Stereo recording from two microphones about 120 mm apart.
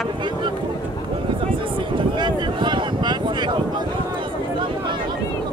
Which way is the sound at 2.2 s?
40° right (ahead or behind).